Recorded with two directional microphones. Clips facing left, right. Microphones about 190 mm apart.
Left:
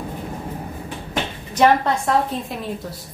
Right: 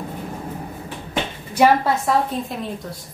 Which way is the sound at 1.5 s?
5° right (ahead or behind).